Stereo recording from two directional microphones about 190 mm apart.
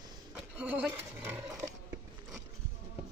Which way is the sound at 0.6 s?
5° right (ahead or behind).